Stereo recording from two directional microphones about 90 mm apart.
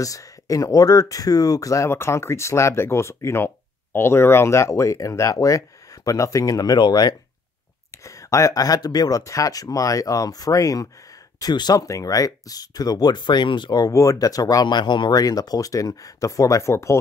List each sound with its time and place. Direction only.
0.0 s speech: 40° left (ahead or behind)
7.9 s speech: 35° left (ahead or behind)